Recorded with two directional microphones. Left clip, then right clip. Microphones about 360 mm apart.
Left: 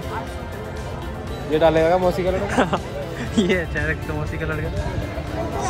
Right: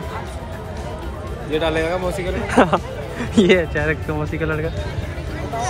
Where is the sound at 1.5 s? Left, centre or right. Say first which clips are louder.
Left 4 dB; left.